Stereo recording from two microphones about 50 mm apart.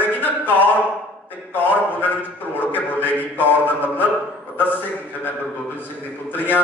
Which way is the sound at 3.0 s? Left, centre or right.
Left.